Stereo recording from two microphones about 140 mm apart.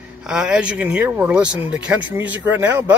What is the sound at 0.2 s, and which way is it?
Speech, 5° right (ahead or behind).